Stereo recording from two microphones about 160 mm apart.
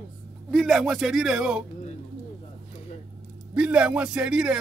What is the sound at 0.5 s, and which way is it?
A man's voice, centre (ahead or behind).